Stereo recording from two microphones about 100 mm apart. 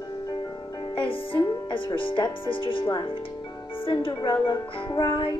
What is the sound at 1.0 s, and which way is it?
Speech, 55° left (ahead or behind).